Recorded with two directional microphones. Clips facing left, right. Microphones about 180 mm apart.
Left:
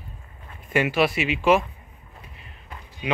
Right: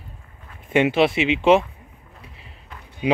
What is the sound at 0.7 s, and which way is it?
Speech, 25° right (ahead or behind).